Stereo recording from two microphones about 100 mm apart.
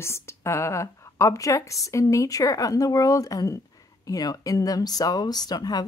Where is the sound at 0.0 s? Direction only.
25° left (ahead or behind).